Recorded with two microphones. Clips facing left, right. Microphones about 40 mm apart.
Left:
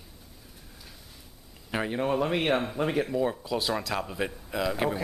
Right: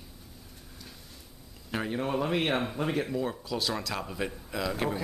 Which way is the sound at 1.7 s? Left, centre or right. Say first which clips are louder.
Left 3 dB; centre.